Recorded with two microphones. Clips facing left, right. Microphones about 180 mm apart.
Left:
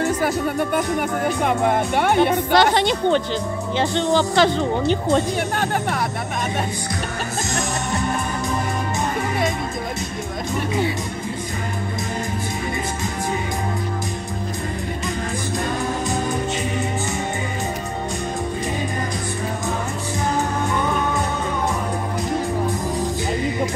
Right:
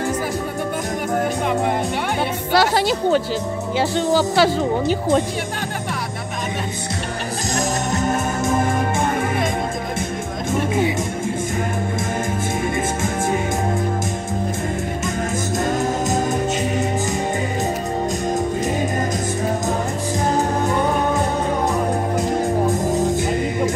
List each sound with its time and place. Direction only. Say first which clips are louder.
1.4 s speech: left 1 dB; 55° left (ahead or behind)
2.1 s speech: left 2 dB; 5° right (ahead or behind)
7.5 s music: right 4 dB; 40° right (ahead or behind)